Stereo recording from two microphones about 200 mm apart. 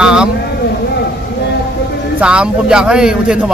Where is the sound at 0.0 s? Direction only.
5° right (ahead or behind).